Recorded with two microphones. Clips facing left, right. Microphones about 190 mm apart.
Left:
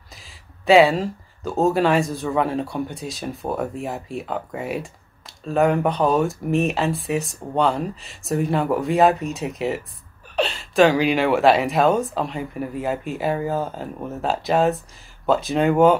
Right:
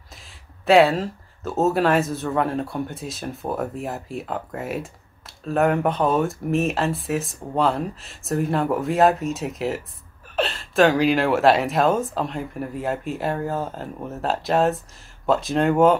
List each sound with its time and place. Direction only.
0.2 s speech: centre (ahead or behind)